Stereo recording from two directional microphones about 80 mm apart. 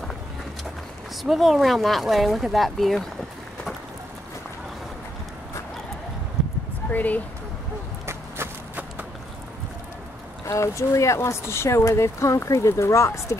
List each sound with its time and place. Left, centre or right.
1.2 s speech: centre
6.9 s speech: left
8.1 s run: right
10.4 s speech: left